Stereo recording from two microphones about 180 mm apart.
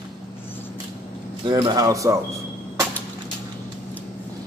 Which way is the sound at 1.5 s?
20° right (ahead or behind).